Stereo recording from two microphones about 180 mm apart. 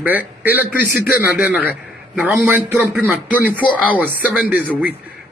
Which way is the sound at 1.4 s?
10° right (ahead or behind).